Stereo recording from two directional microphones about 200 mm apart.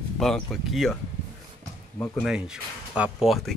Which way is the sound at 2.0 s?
5° left (ahead or behind).